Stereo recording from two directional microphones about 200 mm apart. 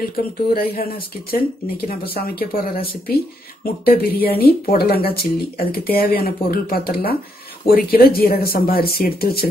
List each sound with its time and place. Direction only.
0.1 s speech: 50° left (ahead or behind)